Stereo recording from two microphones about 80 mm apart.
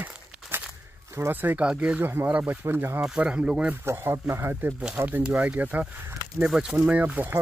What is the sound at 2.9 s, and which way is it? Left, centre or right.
Speech, centre.